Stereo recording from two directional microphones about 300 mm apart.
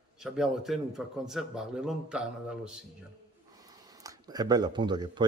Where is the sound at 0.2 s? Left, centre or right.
Centre.